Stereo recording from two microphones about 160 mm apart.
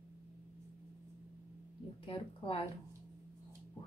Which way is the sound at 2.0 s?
35° left (ahead or behind).